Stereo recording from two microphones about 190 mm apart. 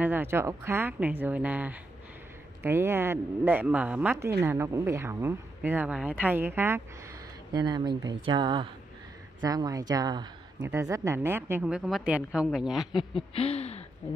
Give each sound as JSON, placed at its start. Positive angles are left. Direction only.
{"t": 0.0, "sound": "speech", "side_deg": -10}
{"t": 13.3, "sound": "speech", "side_deg": 30}